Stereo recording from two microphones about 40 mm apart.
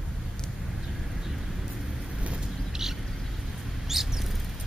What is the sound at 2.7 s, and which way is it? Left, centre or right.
Vehicle, centre.